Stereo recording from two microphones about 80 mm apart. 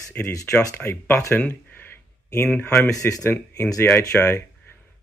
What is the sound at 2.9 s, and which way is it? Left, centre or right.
Speech, left.